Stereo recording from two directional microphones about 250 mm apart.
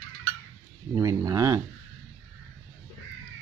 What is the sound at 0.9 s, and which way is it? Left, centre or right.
Speech, centre.